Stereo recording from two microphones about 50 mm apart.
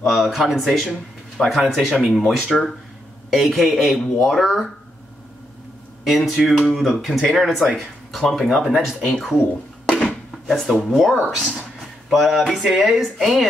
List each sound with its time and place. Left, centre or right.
0.0 s speech: centre
3.3 s speech: centre
6.0 s speech: centre
9.8 s a sound: centre
10.9 s speech: centre